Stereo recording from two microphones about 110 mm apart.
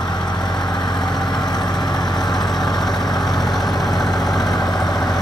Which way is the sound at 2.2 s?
5° left (ahead or behind).